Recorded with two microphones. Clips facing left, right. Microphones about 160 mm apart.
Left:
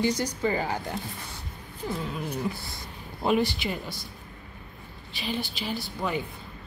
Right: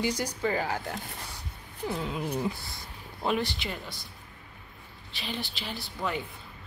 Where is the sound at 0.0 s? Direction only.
10° right (ahead or behind).